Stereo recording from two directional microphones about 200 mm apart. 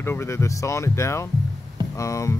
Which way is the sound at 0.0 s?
10° left (ahead or behind).